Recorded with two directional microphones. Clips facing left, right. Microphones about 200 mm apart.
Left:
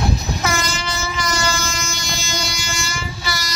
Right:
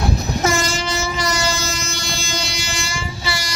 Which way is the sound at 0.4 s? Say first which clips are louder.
Right 4 dB; 40° right (ahead or behind).